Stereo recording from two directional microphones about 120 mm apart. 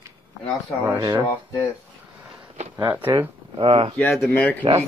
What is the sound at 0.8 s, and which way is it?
Speech, 25° right (ahead or behind).